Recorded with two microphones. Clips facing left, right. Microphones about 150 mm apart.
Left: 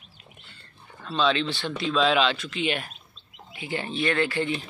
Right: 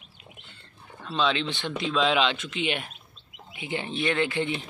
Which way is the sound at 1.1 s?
15° right (ahead or behind).